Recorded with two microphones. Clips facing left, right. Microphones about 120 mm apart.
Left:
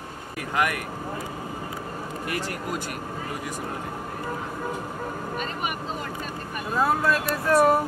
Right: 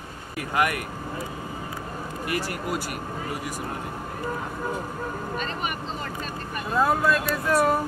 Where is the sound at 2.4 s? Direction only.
5° right (ahead or behind).